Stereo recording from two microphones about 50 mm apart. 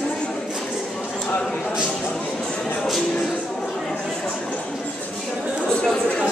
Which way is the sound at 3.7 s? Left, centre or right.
Centre.